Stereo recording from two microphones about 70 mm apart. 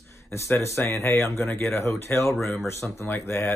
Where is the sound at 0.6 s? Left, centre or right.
Left.